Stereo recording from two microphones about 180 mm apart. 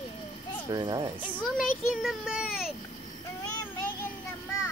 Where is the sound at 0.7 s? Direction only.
25° right (ahead or behind).